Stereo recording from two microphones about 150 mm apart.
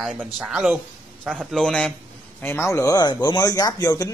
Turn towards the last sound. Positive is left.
turn(degrees=25)  # may be behind; listen again after turning